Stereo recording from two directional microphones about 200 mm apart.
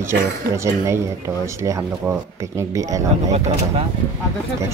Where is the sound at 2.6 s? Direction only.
15° right (ahead or behind).